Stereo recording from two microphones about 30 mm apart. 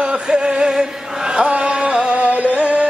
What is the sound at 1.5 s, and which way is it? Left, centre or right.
Music, right.